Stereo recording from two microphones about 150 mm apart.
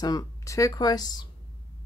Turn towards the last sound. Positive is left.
turn(degrees=25)  # may be behind; listen again after turning